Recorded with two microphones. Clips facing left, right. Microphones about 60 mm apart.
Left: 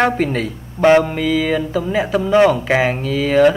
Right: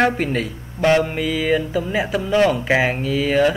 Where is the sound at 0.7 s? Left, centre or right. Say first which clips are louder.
Left 5 dB; left.